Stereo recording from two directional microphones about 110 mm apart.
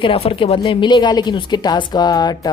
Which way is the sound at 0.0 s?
55° left (ahead or behind).